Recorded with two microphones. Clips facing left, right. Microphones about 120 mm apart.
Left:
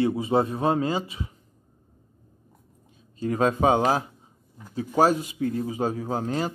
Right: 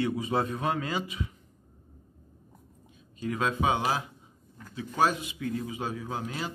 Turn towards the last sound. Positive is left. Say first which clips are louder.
# left 8 dB
turn(degrees=45)  # may be behind; listen again after turning